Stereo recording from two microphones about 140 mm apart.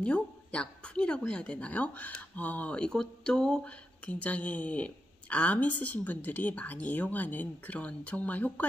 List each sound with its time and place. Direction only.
0.0 s a woman's voice: 10° left (ahead or behind)